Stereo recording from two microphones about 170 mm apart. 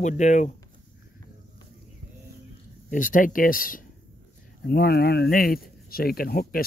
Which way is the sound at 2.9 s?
50° left (ahead or behind).